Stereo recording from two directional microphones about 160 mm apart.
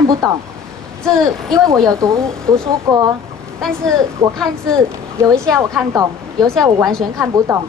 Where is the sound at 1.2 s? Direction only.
20° right (ahead or behind).